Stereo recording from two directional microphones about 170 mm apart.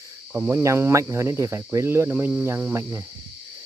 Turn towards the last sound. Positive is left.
turn(degrees=-15)  # may be behind; listen again after turning